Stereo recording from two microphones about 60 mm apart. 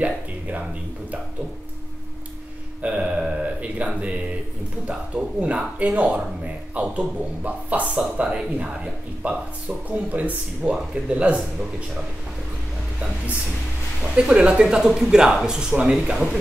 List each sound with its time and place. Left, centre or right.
0.0 s speech: right
2.8 s speech: centre
14.1 s speech: centre